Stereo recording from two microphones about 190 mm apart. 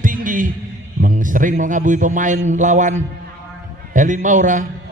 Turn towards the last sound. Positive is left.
turn(degrees=-40)  # may be behind; listen again after turning